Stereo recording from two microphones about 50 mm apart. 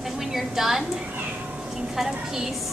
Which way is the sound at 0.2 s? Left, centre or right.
Centre.